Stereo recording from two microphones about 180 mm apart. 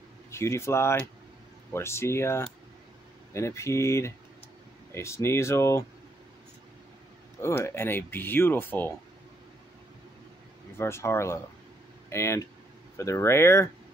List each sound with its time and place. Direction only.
0.3 s speech: 15° left (ahead or behind)
7.4 s speech: 15° left (ahead or behind)
10.8 s speech: 15° left (ahead or behind)